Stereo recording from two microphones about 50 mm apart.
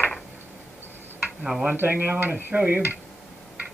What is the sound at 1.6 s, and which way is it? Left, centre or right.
Speech, right.